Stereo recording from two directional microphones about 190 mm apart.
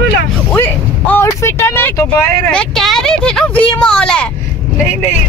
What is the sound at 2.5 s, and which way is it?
Speech, 5° left (ahead or behind).